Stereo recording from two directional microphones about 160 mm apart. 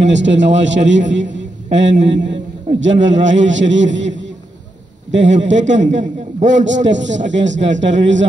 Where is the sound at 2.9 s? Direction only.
50° right (ahead or behind).